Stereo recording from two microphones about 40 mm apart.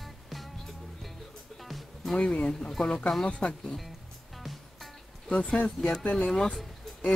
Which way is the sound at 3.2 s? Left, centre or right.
Left.